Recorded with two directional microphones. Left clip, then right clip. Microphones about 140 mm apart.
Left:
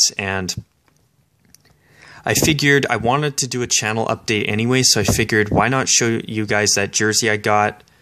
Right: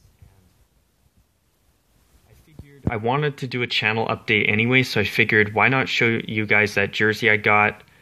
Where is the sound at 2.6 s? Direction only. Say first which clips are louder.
Left 11 dB; 25° left (ahead or behind).